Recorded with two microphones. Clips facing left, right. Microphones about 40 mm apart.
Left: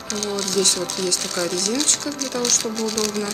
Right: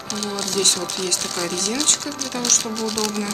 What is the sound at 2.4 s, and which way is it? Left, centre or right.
Speech, right.